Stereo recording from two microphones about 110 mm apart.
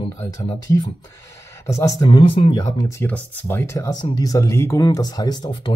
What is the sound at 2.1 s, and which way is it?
Speech, 55° left (ahead or behind).